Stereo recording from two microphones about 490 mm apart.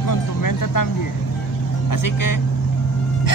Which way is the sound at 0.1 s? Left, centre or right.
Left.